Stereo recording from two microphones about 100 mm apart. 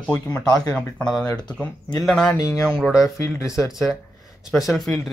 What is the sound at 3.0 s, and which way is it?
Speech, 30° left (ahead or behind).